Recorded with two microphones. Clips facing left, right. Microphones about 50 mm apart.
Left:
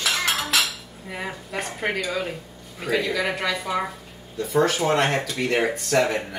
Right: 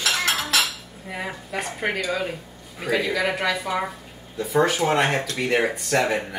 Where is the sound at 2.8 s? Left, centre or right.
Centre.